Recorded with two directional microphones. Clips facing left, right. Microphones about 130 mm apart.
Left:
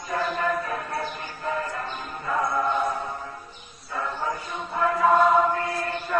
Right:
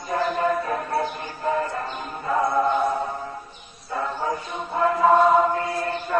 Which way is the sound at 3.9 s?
25° right (ahead or behind).